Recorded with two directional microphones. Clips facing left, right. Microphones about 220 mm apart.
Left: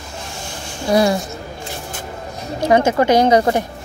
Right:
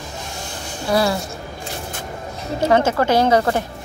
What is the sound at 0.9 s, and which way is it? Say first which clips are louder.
Speech: left 3 dB; 20° left (ahead or behind).